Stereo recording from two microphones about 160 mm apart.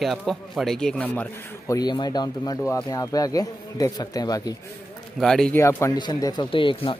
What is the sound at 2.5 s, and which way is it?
Speech, 10° left (ahead or behind).